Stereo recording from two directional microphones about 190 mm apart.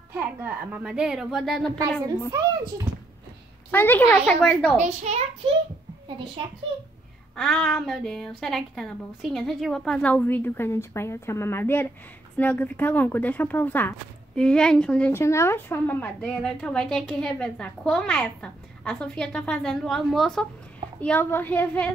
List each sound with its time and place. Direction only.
0.1 s speech: 10° right (ahead or behind)
3.7 s speech: 10° left (ahead or behind)
4.7 s a child's voice: 35° right (ahead or behind)
7.3 s a child's voice: centre (ahead or behind)